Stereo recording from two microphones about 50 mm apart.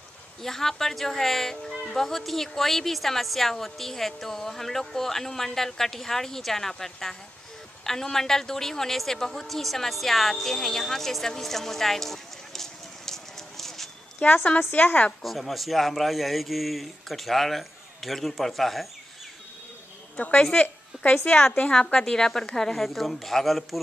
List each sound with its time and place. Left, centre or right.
0.4 s a woman's voice: centre
14.2 s a woman's voice: left
15.2 s speech: centre
20.2 s a woman's voice: left
20.9 s a woman's voice: centre
21.3 s a woman's voice: left; by 23.8 s centre